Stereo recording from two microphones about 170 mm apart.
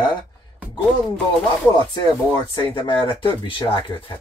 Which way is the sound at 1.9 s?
25° left (ahead or behind).